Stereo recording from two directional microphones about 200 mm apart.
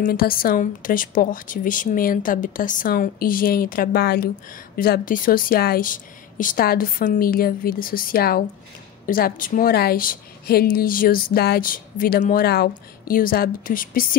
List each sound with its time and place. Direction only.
0.0 s a woman's voice: 45° left (ahead or behind)